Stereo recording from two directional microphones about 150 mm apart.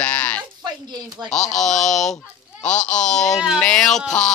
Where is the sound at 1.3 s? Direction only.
55° left (ahead or behind).